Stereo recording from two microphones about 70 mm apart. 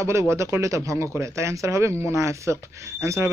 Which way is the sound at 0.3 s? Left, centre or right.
Right.